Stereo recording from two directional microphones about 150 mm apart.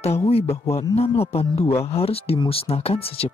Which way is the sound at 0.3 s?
40° left (ahead or behind).